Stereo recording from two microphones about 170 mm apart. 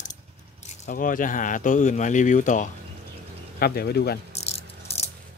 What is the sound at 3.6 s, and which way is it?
Speech, 65° left (ahead or behind).